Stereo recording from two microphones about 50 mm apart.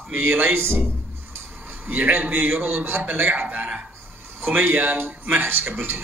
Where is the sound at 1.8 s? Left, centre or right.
Right.